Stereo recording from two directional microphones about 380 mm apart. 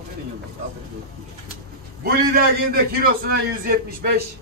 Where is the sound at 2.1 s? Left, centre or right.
Right.